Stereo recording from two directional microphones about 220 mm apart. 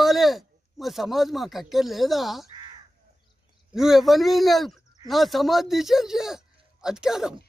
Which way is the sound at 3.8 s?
Centre (ahead or behind).